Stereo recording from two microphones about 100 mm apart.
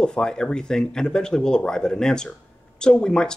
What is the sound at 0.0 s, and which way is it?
Speech, 10° left (ahead or behind).